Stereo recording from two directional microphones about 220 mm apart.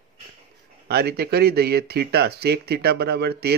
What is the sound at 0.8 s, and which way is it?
Speech, 45° right (ahead or behind).